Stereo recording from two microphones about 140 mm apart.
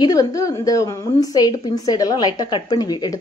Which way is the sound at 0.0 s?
25° left (ahead or behind).